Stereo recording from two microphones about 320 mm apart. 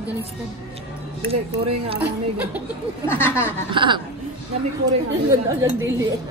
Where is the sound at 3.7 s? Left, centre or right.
Centre.